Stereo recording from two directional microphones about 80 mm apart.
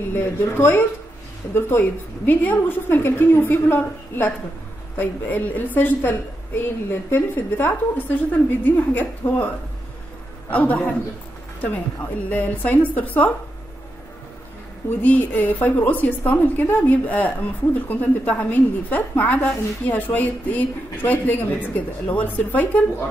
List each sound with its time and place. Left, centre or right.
0.1 s a woman's voice: left
10.5 s a man's voice: centre
12.3 s a woman's voice: left
15.0 s a woman's voice: left